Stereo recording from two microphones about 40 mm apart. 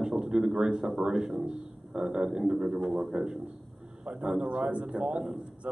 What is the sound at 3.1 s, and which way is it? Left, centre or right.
A man's voice, right.